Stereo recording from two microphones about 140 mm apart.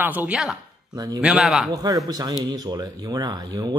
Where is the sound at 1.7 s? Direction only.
25° right (ahead or behind).